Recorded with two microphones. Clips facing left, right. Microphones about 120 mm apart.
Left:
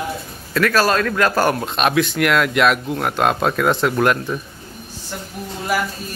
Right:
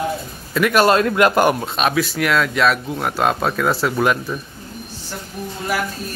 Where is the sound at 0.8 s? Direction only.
20° right (ahead or behind).